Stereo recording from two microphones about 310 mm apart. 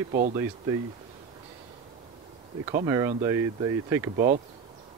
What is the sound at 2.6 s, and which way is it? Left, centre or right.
Speech, centre.